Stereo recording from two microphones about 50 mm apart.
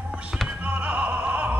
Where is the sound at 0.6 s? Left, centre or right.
Right.